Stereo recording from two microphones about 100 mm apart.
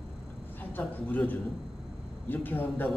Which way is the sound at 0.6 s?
15° left (ahead or behind).